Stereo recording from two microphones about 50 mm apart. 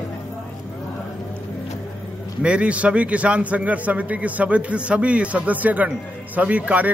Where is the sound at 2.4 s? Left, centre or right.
Right.